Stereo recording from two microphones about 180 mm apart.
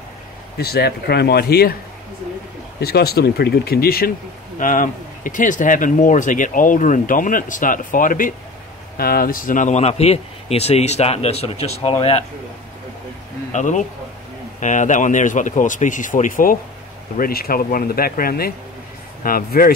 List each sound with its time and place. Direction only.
0.6 s speech: 60° left (ahead or behind)
2.8 s speech: 60° left (ahead or behind); by 12.3 s 35° left (ahead or behind)
13.5 s a man's voice: 40° left (ahead or behind)